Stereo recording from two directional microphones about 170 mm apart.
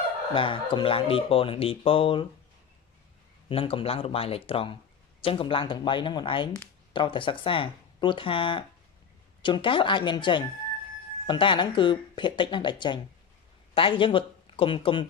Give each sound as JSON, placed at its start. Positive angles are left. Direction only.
{"t": 0.3, "sound": "speech", "side_deg": 30}
{"t": 3.4, "sound": "speech", "side_deg": 30}